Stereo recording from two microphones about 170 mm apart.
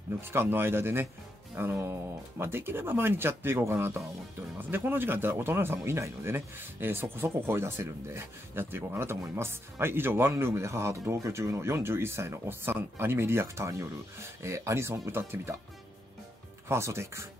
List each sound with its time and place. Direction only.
0.2 s speech: 15° right (ahead or behind)
16.6 s speech: 15° right (ahead or behind)